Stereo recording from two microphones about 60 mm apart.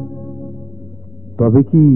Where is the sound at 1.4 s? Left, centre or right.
Centre.